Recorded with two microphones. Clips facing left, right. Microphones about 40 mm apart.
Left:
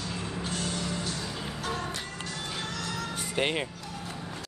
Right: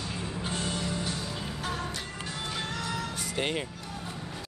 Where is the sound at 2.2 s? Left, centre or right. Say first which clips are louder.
Right 3 dB; centre.